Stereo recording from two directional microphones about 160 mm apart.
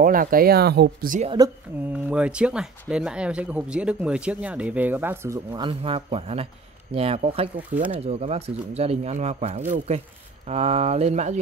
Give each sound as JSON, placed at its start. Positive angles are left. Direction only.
{"t": 0.0, "sound": "speech", "side_deg": -60}
{"t": 1.4, "sound": "speech", "side_deg": -25}
{"t": 2.0, "sound": "speech", "side_deg": -5}
{"t": 5.5, "sound": "speech", "side_deg": -30}
{"t": 7.5, "sound": "speech", "side_deg": -10}
{"t": 7.9, "sound": "speech", "side_deg": -40}